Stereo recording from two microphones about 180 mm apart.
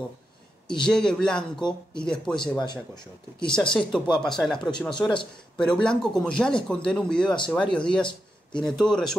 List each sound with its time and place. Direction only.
0.7 s speech: 5° left (ahead or behind)
2.4 s speech: 25° left (ahead or behind)
3.4 s speech: 5° left (ahead or behind)